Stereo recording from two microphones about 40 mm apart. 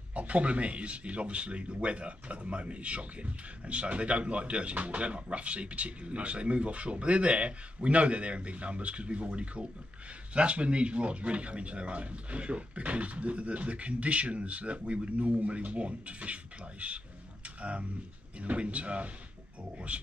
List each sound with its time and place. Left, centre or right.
0.1 s speech: right